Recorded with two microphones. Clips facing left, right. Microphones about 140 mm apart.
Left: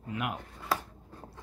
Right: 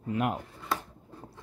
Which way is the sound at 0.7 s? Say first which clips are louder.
Left 1 dB; centre (ahead or behind).